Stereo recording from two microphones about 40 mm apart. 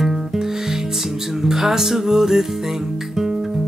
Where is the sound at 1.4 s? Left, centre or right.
Centre.